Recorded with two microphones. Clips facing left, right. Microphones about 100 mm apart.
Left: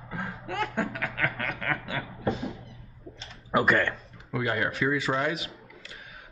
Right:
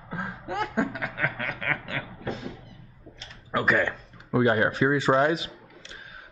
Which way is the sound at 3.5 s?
5° left (ahead or behind).